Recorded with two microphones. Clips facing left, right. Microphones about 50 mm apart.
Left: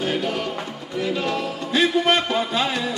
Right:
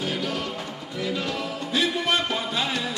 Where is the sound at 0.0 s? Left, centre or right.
Left.